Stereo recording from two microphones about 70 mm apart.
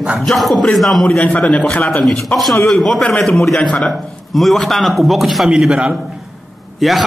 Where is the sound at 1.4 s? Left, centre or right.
Centre.